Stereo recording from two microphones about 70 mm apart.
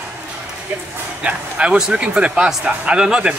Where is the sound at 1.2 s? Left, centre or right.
Centre.